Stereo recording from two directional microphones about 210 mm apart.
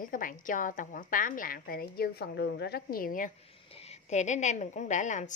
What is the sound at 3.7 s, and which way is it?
A woman's voice, 30° left (ahead or behind).